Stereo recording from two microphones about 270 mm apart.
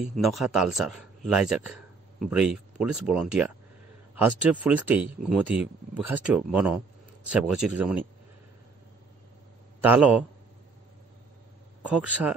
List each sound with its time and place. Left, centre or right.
0.0 s speech: centre
9.8 s speech: centre
11.8 s speech: centre